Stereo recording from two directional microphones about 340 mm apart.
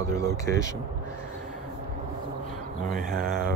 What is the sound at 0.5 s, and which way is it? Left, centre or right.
Speech, right.